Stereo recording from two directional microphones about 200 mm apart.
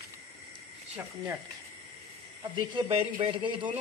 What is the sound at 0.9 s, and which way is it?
Speech, 10° right (ahead or behind).